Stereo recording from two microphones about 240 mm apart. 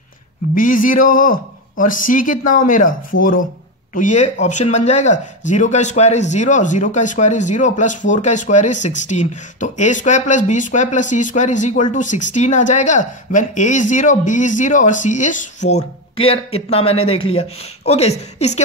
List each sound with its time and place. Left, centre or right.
0.6 s speech: left
3.9 s speech: left